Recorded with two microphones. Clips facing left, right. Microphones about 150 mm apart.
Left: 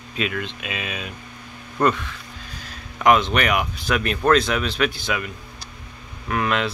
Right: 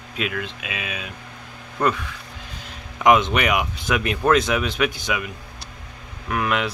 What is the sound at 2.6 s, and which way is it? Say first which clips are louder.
Speech: right 1 dB; 20° right (ahead or behind).